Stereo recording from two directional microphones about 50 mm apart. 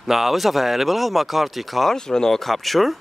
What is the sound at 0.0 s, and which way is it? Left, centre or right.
Speech, centre.